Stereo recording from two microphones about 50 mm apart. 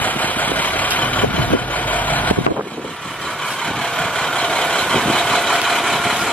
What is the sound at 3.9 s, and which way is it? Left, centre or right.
Vehicle, centre.